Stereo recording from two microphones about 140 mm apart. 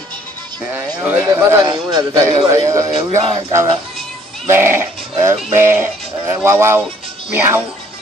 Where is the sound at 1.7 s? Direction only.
30° right (ahead or behind).